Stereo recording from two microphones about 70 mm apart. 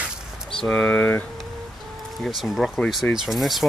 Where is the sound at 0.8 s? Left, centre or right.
Left.